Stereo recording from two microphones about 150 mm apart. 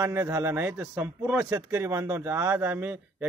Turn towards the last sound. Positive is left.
turn(degrees=-15)  # may be behind; listen again after turning